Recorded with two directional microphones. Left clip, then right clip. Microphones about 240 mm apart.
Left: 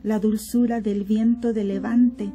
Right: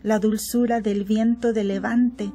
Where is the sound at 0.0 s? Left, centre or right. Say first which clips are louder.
Right 3 dB; right.